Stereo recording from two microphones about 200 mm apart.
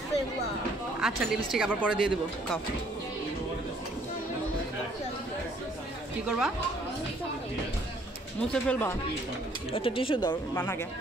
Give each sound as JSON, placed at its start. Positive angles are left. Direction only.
{"t": 1.0, "sound": "speech", "side_deg": -5}
{"t": 6.2, "sound": "speech", "side_deg": -5}
{"t": 8.6, "sound": "speech", "side_deg": 5}
{"t": 9.7, "sound": "speech", "side_deg": 25}